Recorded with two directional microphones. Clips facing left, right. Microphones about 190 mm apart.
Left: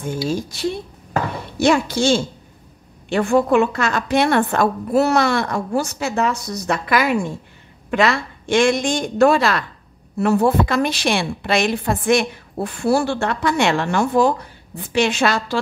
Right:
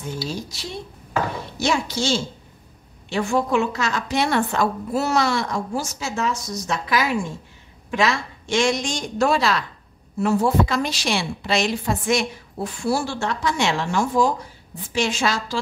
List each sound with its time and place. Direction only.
0.3 s a woman's voice: 55° left (ahead or behind)